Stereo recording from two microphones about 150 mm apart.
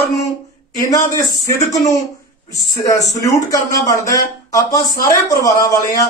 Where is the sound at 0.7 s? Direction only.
25° left (ahead or behind).